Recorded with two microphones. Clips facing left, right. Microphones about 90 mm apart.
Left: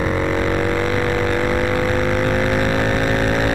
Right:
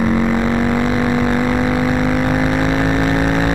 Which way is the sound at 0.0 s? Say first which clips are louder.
Right 4 dB; 10° right (ahead or behind).